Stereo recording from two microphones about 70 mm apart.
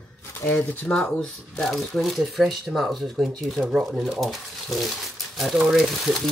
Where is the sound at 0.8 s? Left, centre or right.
Centre.